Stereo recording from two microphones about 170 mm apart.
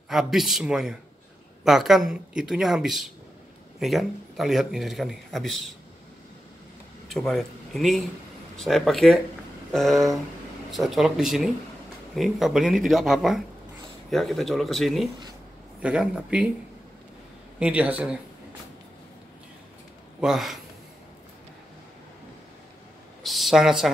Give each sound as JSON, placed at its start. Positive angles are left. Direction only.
{"t": 0.1, "sound": "speech", "side_deg": 0}
{"t": 7.1, "sound": "speech", "side_deg": 0}
{"t": 17.6, "sound": "speech", "side_deg": -10}
{"t": 20.2, "sound": "speech", "side_deg": 0}
{"t": 23.2, "sound": "speech", "side_deg": 0}